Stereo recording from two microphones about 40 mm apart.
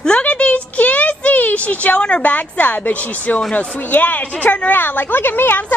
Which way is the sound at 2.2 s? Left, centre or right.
Left.